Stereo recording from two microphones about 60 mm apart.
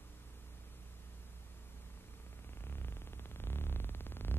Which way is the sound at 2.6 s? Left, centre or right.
Left.